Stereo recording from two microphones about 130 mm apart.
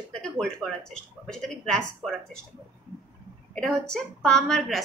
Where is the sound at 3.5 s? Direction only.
5° left (ahead or behind).